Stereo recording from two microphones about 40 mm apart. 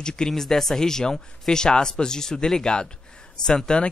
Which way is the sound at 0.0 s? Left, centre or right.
Centre.